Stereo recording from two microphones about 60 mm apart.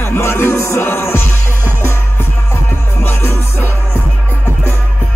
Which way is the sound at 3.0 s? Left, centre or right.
Left.